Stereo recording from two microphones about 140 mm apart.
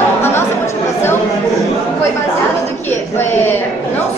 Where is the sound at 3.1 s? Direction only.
15° left (ahead or behind).